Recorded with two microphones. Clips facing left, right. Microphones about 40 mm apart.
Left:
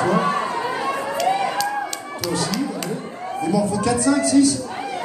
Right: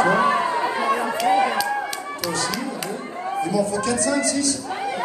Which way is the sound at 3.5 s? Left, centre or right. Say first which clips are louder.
Left 4 dB; centre.